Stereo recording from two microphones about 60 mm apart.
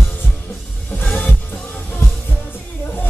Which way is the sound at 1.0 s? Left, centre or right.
Left.